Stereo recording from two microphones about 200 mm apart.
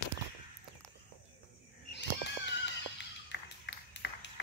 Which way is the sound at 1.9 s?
60° left (ahead or behind).